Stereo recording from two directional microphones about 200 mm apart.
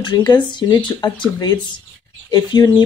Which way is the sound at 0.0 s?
20° left (ahead or behind).